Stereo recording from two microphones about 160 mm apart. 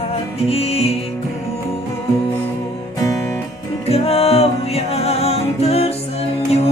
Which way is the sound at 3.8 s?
40° left (ahead or behind).